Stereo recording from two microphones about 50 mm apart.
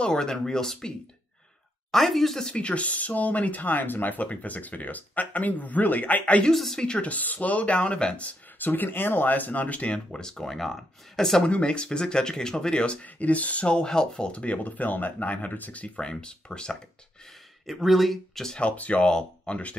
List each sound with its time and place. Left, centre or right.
0.0 s speech: centre
2.4 s speech: left
6.4 s speech: centre
7.0 s speech: left
9.9 s speech: centre
10.3 s speech: centre
11.4 s speech: left
16.0 s speech: centre
17.6 s speech: centre
18.6 s speech: left